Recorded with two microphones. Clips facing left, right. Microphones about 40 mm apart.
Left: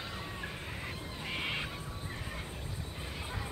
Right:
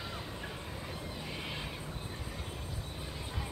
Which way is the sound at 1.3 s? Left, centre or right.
Left.